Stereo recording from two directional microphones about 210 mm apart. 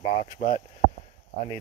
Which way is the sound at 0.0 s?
30° left (ahead or behind).